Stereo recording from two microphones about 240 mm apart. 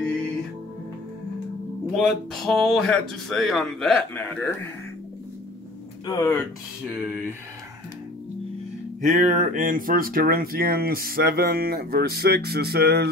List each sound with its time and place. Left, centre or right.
1.9 s speech: centre
6.0 s speech: centre
9.0 s speech: right